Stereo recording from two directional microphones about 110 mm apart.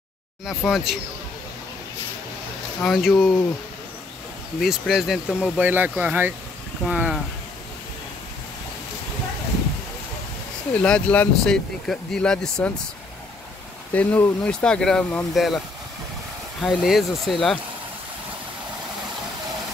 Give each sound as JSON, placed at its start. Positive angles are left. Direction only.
{"t": 0.5, "sound": "speech", "side_deg": 0}
{"t": 2.8, "sound": "speech", "side_deg": 0}
{"t": 4.6, "sound": "speech", "side_deg": 0}
{"t": 5.4, "sound": "speech", "side_deg": -15}
{"t": 10.7, "sound": "speech", "side_deg": 10}
{"t": 13.9, "sound": "speech", "side_deg": 15}
{"t": 16.6, "sound": "speech", "side_deg": 0}